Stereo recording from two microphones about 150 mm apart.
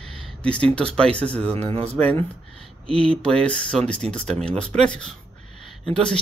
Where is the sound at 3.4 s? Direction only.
5° left (ahead or behind).